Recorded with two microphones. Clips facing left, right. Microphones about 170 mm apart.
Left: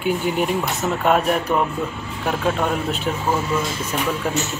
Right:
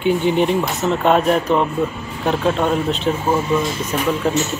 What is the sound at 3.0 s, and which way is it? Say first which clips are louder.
Speech: right 4 dB; 20° right (ahead or behind).